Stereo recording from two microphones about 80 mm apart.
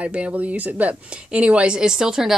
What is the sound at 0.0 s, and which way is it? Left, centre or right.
A woman's voice, centre.